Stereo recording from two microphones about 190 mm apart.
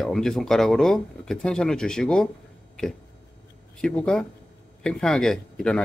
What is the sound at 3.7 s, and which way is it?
Speech, 5° left (ahead or behind).